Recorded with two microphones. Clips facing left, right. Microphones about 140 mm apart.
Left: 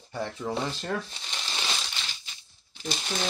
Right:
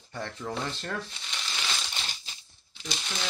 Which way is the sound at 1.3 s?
30° left (ahead or behind).